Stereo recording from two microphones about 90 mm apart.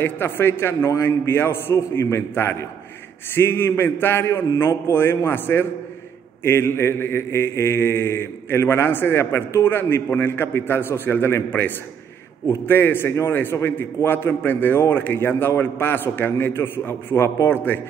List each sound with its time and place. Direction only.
0.0 s mantra: 25° left (ahead or behind)